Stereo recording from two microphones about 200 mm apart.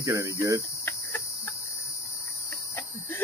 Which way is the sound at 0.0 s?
15° right (ahead or behind).